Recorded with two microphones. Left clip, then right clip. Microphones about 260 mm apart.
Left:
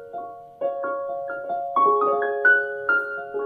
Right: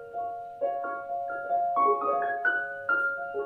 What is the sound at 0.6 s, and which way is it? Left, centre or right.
Music, left.